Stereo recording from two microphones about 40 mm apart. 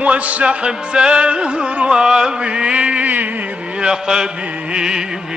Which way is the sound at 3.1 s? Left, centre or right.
Right.